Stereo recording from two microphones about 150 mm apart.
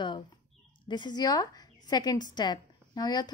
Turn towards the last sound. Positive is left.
turn(degrees=25)  # may be behind; listen again after turning